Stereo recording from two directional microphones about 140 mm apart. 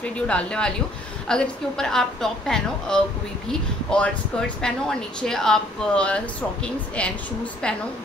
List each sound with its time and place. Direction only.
0.0 s a woman's voice: 10° left (ahead or behind)